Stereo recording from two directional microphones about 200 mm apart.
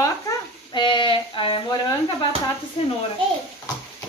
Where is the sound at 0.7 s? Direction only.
25° left (ahead or behind).